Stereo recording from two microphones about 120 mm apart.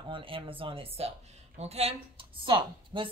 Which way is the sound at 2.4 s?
45° right (ahead or behind).